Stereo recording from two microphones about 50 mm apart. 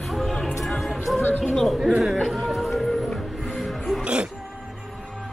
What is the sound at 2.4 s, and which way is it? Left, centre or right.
Music, centre.